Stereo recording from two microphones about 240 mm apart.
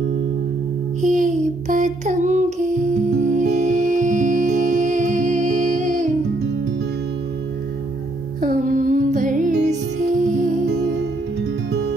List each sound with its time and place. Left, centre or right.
1.0 s music: right
8.4 s music: right